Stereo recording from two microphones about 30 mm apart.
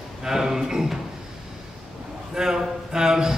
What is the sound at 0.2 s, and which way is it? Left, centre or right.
Speech, centre.